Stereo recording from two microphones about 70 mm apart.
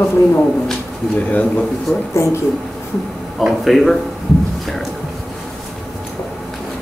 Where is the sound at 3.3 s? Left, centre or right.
Centre.